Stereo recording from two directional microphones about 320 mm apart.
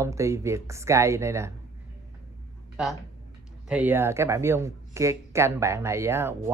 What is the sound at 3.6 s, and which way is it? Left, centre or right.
Speech, centre.